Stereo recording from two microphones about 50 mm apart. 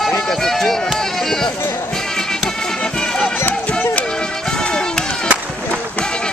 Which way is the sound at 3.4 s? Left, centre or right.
Left.